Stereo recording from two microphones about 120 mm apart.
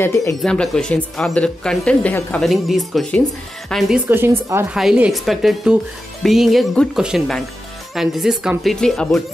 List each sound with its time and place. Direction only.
0.0 s speech: 25° left (ahead or behind)
0.4 s speech: 5° left (ahead or behind)
2.4 s speech: centre (ahead or behind)
4.1 s speech: 20° right (ahead or behind)
4.6 s speech: 5° right (ahead or behind)